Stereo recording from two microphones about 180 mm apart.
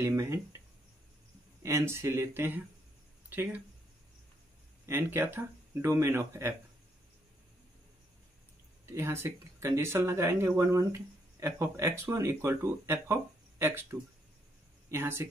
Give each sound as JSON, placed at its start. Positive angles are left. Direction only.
{"t": 0.0, "sound": "speech", "side_deg": -15}
{"t": 1.6, "sound": "speech", "side_deg": -15}
{"t": 4.8, "sound": "speech", "side_deg": -15}
{"t": 8.8, "sound": "speech", "side_deg": -15}